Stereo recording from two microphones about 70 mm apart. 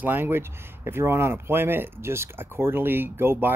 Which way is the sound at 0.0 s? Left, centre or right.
Right.